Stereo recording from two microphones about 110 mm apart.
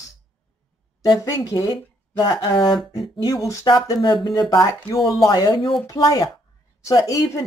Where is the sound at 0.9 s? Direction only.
35° left (ahead or behind).